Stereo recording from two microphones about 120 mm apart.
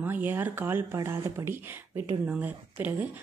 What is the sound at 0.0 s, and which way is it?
Speech, 15° right (ahead or behind).